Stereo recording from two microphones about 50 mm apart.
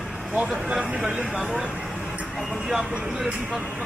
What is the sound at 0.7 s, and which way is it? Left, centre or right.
Speech, centre.